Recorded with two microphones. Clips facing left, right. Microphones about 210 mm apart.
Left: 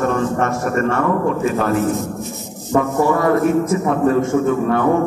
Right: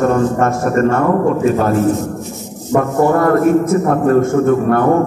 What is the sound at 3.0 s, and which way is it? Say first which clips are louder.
Speech: right 5 dB; 55° right (ahead or behind).